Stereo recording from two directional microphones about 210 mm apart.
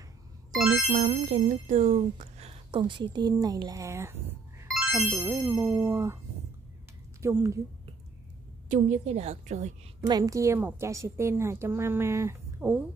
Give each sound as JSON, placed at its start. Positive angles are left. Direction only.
{"t": 0.6, "sound": "music", "side_deg": 0}
{"t": 0.9, "sound": "a woman's voice", "side_deg": -35}
{"t": 4.7, "sound": "music", "side_deg": 0}
{"t": 5.2, "sound": "a woman's voice", "side_deg": -10}
{"t": 7.2, "sound": "a woman's voice", "side_deg": -15}
{"t": 8.6, "sound": "a woman's voice", "side_deg": -35}
{"t": 10.0, "sound": "a woman's voice", "side_deg": -15}